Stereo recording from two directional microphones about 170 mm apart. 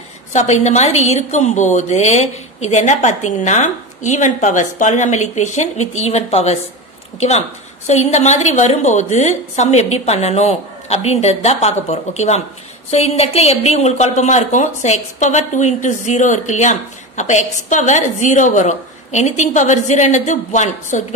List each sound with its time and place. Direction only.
0.3 s a woman's voice: 40° left (ahead or behind)